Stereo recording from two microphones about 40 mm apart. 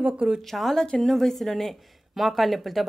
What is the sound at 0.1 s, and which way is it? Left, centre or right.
Speech, right.